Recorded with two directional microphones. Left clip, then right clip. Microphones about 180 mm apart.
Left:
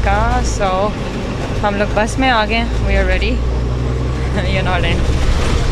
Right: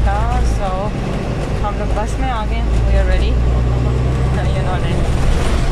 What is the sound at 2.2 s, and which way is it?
Speech, 20° left (ahead or behind).